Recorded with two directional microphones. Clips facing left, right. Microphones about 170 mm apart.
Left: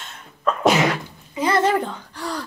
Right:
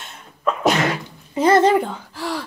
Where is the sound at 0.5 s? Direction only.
Centre (ahead or behind).